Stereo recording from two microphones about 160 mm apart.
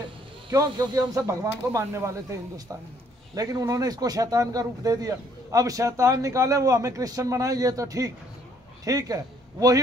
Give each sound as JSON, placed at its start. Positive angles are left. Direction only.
{"t": 0.5, "sound": "a man's voice", "side_deg": -20}